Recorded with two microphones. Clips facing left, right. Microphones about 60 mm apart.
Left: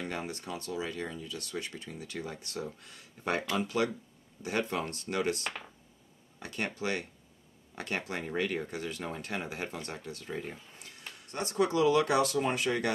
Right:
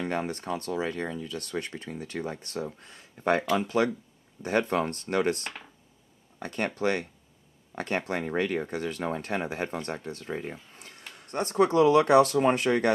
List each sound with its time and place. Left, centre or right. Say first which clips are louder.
0.0 s speech: right 7 dB; right
10.8 s speech: right 2 dB; right